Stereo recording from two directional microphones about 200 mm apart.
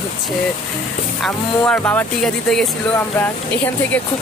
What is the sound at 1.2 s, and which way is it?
Speech, 5° left (ahead or behind).